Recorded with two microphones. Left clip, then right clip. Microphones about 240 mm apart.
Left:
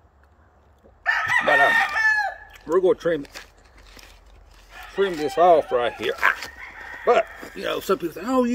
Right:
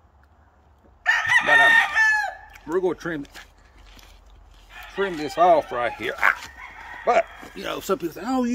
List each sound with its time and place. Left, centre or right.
1.0 s chicken: centre
4.9 s speech: centre
7.5 s speech: centre